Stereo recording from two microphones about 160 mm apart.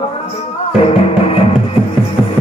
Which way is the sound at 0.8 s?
40° left (ahead or behind).